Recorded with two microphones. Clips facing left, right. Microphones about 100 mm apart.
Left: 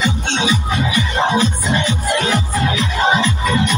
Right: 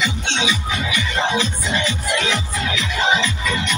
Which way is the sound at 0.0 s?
45° left (ahead or behind).